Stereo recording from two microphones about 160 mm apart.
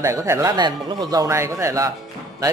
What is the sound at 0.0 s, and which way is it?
A man's voice, 20° right (ahead or behind).